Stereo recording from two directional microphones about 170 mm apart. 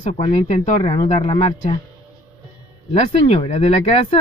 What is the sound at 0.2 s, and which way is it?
Speech, 25° left (ahead or behind).